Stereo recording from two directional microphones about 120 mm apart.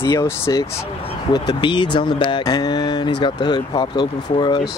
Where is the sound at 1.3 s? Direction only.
35° left (ahead or behind).